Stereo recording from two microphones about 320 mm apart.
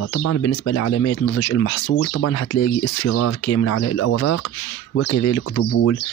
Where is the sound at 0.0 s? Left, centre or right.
Left.